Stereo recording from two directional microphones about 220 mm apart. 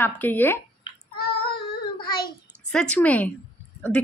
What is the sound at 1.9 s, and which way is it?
Child singing, 20° left (ahead or behind).